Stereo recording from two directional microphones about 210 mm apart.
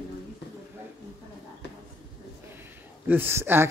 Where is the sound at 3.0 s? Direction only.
10° right (ahead or behind).